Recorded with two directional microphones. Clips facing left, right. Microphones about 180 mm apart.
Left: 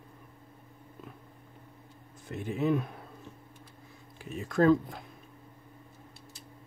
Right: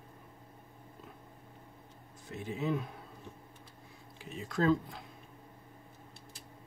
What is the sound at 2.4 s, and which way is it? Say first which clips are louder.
Speech: left 6 dB; 55° left (ahead or behind).